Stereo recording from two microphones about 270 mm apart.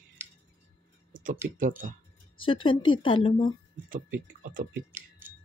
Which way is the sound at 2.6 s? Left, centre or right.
Centre.